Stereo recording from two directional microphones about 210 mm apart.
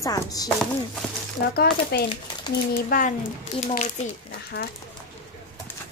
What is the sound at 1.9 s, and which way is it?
Speech, 50° left (ahead or behind).